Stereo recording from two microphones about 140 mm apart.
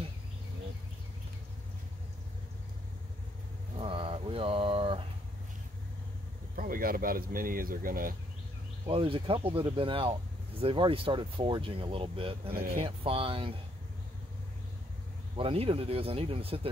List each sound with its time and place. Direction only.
3.7 s a sound: 40° right (ahead or behind)
6.5 s speech: 90° right
8.8 s speech: 40° right (ahead or behind)
15.3 s speech: 40° right (ahead or behind)